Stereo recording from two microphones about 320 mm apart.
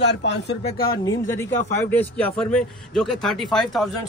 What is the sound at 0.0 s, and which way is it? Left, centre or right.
Speech, left.